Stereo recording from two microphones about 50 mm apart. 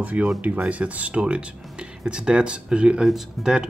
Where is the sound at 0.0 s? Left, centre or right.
Right.